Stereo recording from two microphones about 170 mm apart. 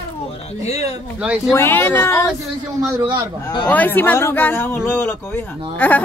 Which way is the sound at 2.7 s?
20° right (ahead or behind).